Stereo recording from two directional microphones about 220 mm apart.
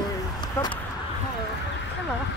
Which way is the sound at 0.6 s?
10° left (ahead or behind).